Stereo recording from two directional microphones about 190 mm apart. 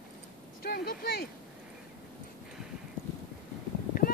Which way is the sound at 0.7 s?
55° left (ahead or behind).